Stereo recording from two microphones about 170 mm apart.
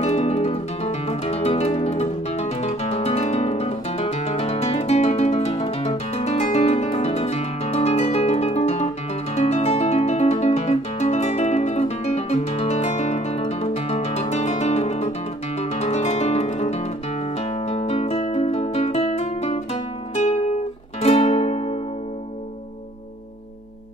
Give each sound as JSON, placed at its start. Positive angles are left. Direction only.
{"t": 0.0, "sound": "music", "side_deg": 40}